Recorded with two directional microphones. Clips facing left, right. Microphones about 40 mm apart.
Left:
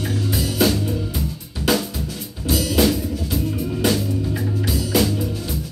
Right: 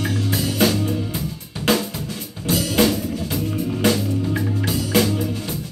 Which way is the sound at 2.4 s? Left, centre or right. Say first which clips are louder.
Even; right.